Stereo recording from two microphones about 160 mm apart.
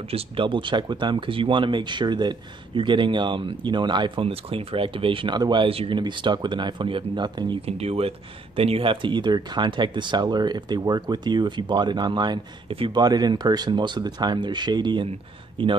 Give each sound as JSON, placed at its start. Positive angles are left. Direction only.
{"t": 0.1, "sound": "speech", "side_deg": -30}